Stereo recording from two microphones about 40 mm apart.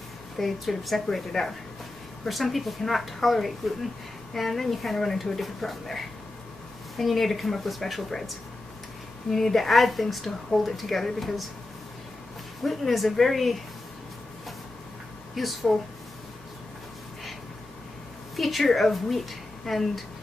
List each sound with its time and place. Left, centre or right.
0.4 s a woman's voice: centre
12.6 s a woman's voice: centre
15.3 s a woman's voice: centre
18.3 s a woman's voice: centre